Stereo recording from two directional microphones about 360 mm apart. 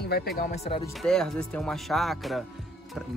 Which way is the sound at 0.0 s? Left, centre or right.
Left.